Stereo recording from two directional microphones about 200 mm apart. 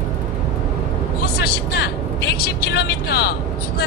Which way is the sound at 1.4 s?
55° left (ahead or behind).